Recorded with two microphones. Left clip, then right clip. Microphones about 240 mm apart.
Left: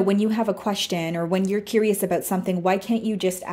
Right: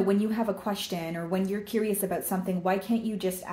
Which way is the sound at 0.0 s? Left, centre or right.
Left.